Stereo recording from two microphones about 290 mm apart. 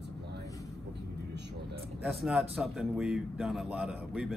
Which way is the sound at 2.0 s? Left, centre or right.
Centre.